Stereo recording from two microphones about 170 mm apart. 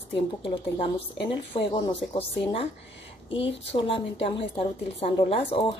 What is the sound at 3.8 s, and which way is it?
Speech, 30° left (ahead or behind).